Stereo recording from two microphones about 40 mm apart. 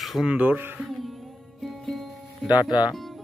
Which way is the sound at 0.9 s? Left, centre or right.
Centre.